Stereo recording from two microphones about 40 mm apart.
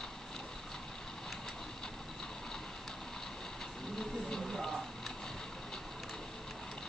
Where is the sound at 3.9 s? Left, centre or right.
Centre.